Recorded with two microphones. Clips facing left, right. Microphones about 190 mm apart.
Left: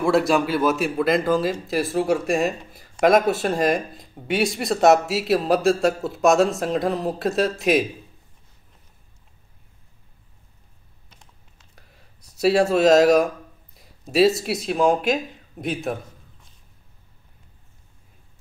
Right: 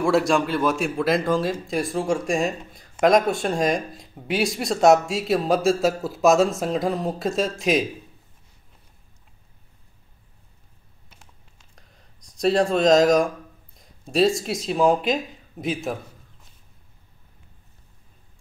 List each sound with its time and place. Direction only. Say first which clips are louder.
0.0 s speech: left 1 dB; centre (ahead or behind)
11.7 s a sound: left 2 dB; 5° left (ahead or behind)
14.1 s speech: left 2 dB; 5° left (ahead or behind)